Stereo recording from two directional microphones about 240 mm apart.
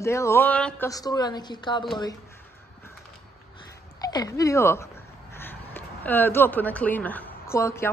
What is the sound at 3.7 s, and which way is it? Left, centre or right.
Speech, centre.